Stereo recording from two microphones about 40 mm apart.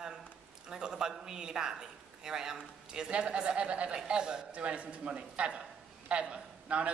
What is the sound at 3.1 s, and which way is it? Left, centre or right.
A man's voice, right.